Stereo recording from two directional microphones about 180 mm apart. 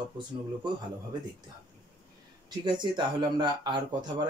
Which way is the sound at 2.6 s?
25° right (ahead or behind).